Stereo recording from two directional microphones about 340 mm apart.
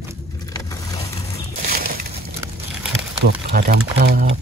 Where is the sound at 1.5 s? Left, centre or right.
Right.